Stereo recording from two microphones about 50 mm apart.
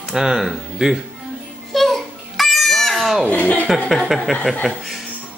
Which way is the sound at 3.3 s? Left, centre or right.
Left.